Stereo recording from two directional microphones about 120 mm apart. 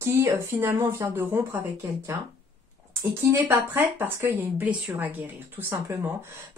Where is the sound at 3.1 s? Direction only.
20° right (ahead or behind).